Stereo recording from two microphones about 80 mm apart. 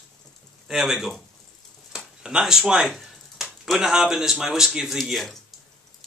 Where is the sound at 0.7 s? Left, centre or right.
Centre.